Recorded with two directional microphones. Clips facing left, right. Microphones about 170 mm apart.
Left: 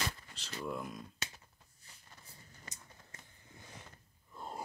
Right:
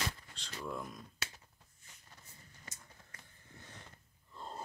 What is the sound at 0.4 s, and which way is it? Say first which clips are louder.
Speech: left 3 dB; 5° left (ahead or behind).